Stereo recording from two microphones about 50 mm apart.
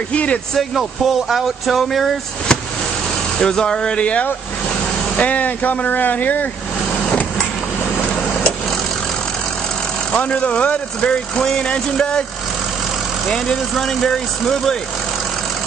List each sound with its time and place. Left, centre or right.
0.1 s speech: left
0.6 s speech: centre
3.3 s speech: centre; by 6.4 s left
10.1 s speech: left
11.3 s speech: centre
13.3 s speech: centre